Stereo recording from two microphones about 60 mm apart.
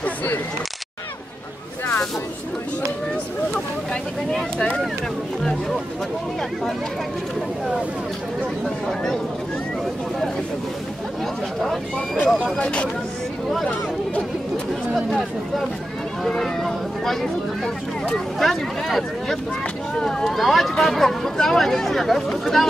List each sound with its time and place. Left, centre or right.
0.0 s speech: left
3.9 s speech: centre
8.6 s speech: centre
11.6 s speech: centre
12.2 s speech: centre
15.0 s speech: centre